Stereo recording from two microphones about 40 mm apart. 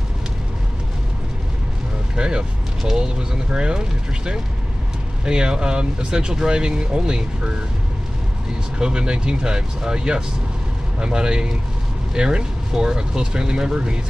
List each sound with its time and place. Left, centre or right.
2.1 s vehicle: right
2.8 s speech: centre
5.2 s speech: right
8.7 s speech: right